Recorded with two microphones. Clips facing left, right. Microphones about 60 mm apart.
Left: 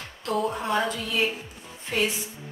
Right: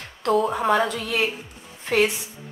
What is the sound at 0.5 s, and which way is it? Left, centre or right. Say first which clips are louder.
Speech: right 5 dB; right.